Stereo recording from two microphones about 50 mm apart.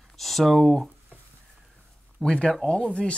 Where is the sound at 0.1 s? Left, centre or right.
Centre.